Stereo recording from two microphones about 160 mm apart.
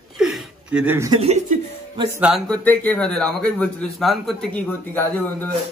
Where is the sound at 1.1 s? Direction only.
40° right (ahead or behind).